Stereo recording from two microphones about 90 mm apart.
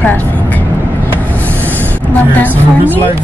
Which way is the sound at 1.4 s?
20° left (ahead or behind).